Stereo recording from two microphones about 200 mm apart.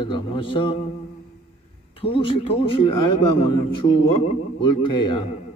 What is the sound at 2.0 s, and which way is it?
Speech, 25° left (ahead or behind).